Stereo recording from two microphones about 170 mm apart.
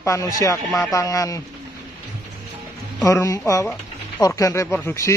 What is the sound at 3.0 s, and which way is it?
Speech, 20° left (ahead or behind).